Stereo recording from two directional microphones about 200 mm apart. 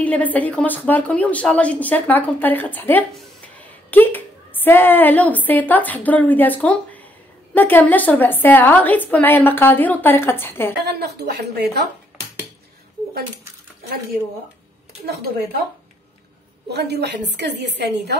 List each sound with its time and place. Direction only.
0.0 s a woman's voice: 5° left (ahead or behind)
10.8 s a woman's voice: 55° right (ahead or behind)
16.6 s a woman's voice: 55° right (ahead or behind)